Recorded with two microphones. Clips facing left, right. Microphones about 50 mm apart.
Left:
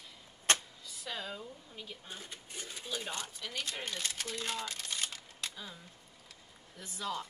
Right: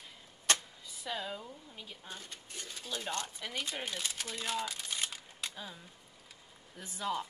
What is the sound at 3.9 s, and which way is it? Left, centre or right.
Speech, centre.